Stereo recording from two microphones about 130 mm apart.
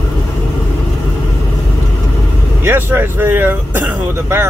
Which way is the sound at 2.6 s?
15° right (ahead or behind).